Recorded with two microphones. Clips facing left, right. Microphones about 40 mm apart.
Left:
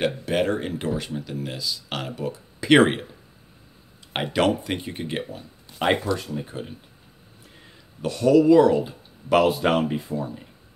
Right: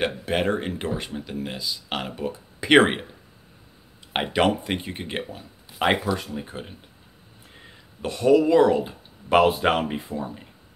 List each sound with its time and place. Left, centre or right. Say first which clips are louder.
0.0 s speech: left 1 dB; centre
4.1 s speech: even; centre